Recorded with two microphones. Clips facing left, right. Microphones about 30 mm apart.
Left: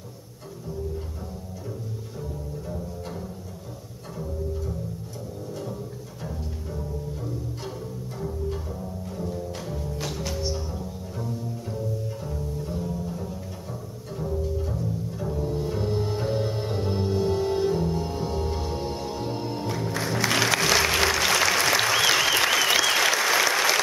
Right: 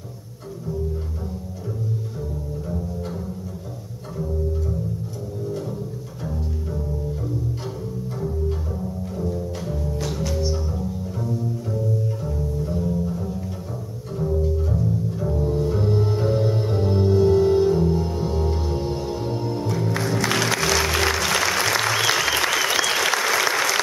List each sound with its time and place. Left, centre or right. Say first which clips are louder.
9.0 s music: right 4 dB; centre
9.9 s cello: right 5 dB; centre
14.1 s bowed string instrument: right 5 dB; centre
20.0 s music: even; centre
20.6 s applause: right 1 dB; centre